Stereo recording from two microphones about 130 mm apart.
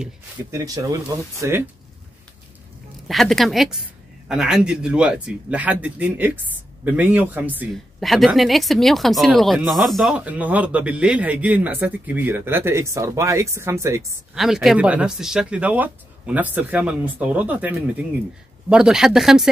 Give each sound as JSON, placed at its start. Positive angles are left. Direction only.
{"t": 0.5, "sound": "speech", "side_deg": -25}
{"t": 3.1, "sound": "speech", "side_deg": 0}
{"t": 8.0, "sound": "speech", "side_deg": 0}
{"t": 14.3, "sound": "speech", "side_deg": 0}